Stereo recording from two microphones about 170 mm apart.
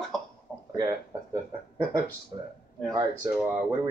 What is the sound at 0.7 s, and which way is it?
Speech, 25° right (ahead or behind).